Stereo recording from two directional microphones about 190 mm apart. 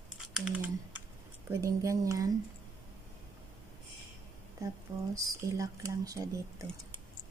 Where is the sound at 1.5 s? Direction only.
15° right (ahead or behind).